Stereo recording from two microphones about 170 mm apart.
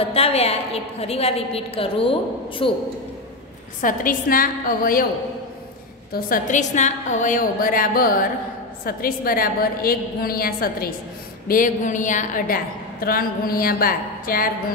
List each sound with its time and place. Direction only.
0.0 s a woman's voice: 35° left (ahead or behind)
3.8 s a woman's voice: 55° left (ahead or behind)
6.1 s a woman's voice: 55° left (ahead or behind)